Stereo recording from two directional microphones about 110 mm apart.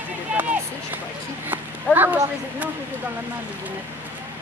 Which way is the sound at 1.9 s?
20° right (ahead or behind).